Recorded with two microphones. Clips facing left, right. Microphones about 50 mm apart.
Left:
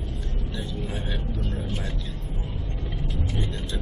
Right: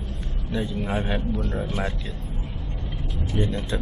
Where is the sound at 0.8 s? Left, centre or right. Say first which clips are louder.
Right 6 dB; right.